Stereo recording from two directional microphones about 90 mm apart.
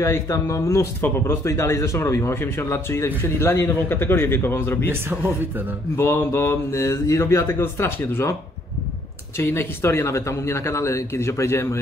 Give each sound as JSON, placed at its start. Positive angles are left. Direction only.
{"t": 0.0, "sound": "speech", "side_deg": 35}
{"t": 5.9, "sound": "speech", "side_deg": 30}
{"t": 9.4, "sound": "speech", "side_deg": 30}